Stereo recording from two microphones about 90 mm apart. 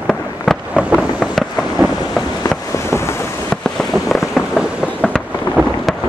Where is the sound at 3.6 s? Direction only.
5° left (ahead or behind).